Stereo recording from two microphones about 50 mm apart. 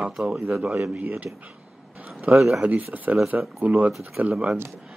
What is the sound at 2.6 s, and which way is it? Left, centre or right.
A man's voice, right.